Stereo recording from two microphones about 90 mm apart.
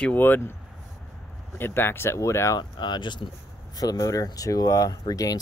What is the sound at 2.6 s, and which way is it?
Speech, 55° left (ahead or behind).